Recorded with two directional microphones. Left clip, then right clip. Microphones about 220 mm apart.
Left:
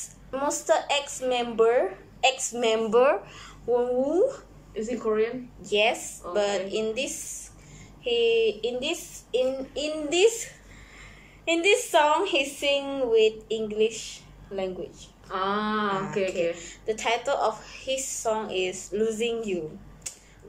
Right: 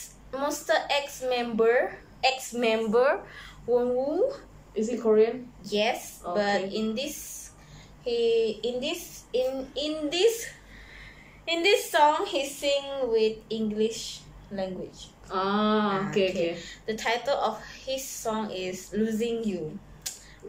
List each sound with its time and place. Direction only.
0.3 s a woman's voice: 10° left (ahead or behind)
4.7 s a woman's voice: 15° right (ahead or behind)
5.7 s a woman's voice: 10° left (ahead or behind)
15.0 s a woman's voice: 15° right (ahead or behind)
17.0 s a woman's voice: 10° left (ahead or behind)